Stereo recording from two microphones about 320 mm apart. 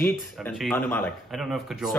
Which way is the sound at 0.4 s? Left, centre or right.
Centre.